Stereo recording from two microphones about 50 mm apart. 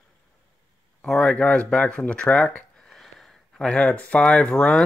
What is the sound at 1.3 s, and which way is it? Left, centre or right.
Speech, left.